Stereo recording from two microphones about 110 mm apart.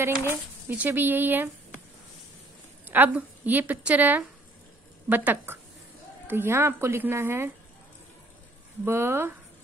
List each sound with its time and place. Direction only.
0.2 s a woman's voice: 15° right (ahead or behind)
2.9 s a woman's voice: 15° right (ahead or behind)
8.8 s speech: 20° right (ahead or behind)